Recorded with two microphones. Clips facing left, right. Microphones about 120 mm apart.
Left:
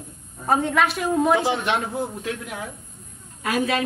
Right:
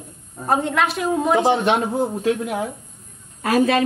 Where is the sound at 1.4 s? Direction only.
30° right (ahead or behind).